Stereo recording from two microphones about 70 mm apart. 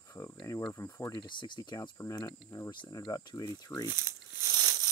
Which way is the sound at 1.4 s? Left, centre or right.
Left.